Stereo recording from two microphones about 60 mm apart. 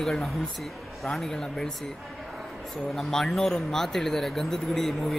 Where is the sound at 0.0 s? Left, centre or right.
Centre.